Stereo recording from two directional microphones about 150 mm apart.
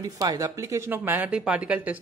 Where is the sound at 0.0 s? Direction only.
25° right (ahead or behind).